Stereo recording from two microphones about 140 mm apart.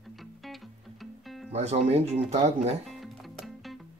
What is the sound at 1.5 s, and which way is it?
Speech, 50° right (ahead or behind).